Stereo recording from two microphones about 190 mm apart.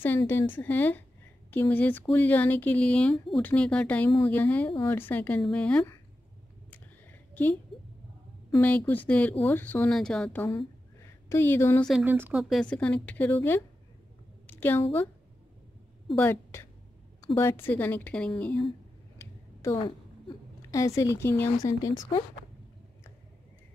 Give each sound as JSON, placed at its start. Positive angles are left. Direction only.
{"t": 0.2, "sound": "speech", "side_deg": 15}
{"t": 6.7, "sound": "a sound", "side_deg": 10}
{"t": 8.5, "sound": "speech", "side_deg": 10}
{"t": 11.1, "sound": "speech", "side_deg": 15}
{"t": 11.9, "sound": "a woman's voice", "side_deg": -10}
{"t": 16.1, "sound": "a woman's voice", "side_deg": 10}
{"t": 19.1, "sound": "a sound", "side_deg": 15}
{"t": 20.7, "sound": "speech", "side_deg": 15}